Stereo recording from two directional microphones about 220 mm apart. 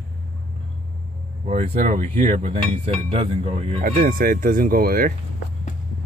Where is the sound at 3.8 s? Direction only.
40° right (ahead or behind).